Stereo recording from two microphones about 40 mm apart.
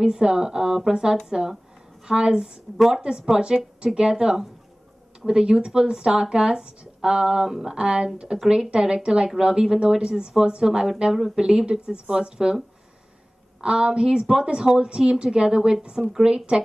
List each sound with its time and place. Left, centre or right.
0.0 s a woman's voice: centre
13.6 s a woman's voice: right
16.0 s a woman's voice: centre